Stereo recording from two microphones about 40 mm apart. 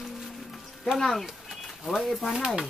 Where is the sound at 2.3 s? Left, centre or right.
Centre.